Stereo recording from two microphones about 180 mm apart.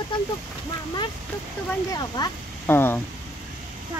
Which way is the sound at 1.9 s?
15° left (ahead or behind).